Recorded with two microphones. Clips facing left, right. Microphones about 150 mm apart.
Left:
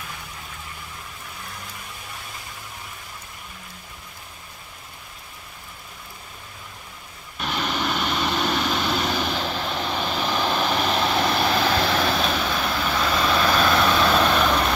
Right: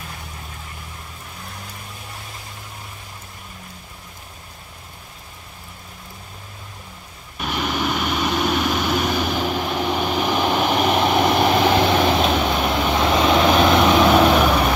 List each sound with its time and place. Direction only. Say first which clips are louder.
7.3 s vehicle: right 3 dB; 10° right (ahead or behind)